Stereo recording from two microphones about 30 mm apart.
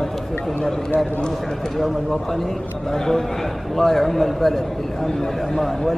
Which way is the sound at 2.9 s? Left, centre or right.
Centre.